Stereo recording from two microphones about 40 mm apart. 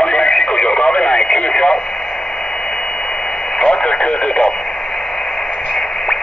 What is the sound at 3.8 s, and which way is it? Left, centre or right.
Speech, left.